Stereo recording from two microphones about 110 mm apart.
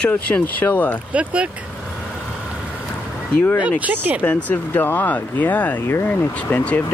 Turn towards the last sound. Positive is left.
turn(degrees=15)  # may be behind; listen again after turning